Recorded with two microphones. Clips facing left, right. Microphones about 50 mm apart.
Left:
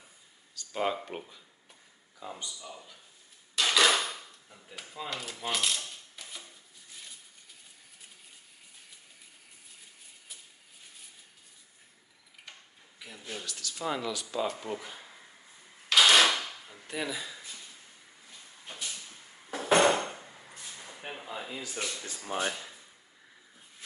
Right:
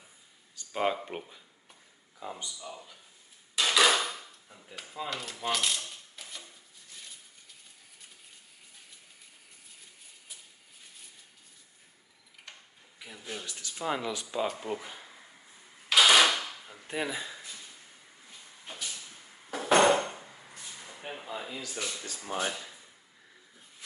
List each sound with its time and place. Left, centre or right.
0.6 s a sound: centre
1.0 s a man's voice: centre
3.5 s mechanisms: centre
12.5 s tick-tock: centre
13.0 s speech: centre
13.5 s speech: centre
15.9 s drawer open or close: centre
16.8 s speech: right
18.7 s a sound: centre
21.5 s speech: left
22.2 s speech: centre